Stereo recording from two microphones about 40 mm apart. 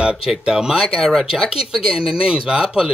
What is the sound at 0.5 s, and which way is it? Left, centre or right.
Speech, centre.